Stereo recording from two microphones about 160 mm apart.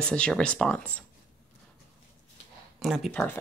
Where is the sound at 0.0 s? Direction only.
5° left (ahead or behind).